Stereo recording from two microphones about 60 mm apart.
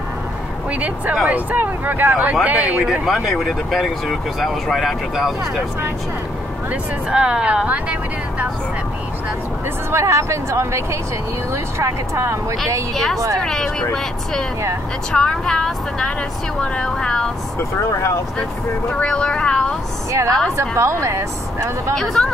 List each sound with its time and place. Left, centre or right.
0.7 s speech: right
2.8 s speech: centre
6.7 s speech: centre
9.8 s a woman's voice: right
12.9 s speech: centre
15.1 s speech: centre
18.9 s speech: centre
20.1 s a woman's voice: right
21.9 s speech: centre